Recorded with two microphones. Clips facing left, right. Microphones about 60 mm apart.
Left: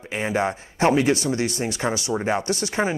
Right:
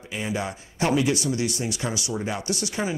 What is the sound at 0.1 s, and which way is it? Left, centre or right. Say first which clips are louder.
Speech: left 6 dB; left.